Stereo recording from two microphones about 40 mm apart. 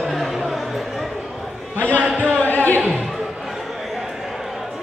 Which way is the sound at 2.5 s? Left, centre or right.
Left.